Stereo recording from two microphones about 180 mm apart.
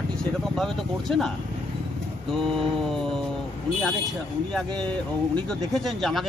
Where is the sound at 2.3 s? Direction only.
Centre (ahead or behind).